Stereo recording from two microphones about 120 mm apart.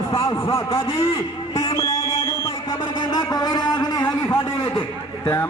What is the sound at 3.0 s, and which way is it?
A man's voice, 35° left (ahead or behind).